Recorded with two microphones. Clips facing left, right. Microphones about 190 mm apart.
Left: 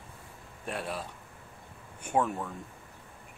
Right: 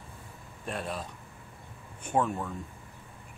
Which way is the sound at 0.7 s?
5° left (ahead or behind).